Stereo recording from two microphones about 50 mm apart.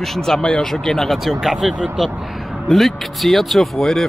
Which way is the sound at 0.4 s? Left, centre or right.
Centre.